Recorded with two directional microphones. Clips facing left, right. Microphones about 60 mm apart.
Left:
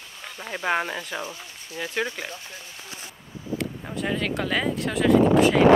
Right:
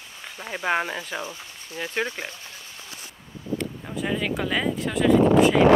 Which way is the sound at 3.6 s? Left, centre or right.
Centre.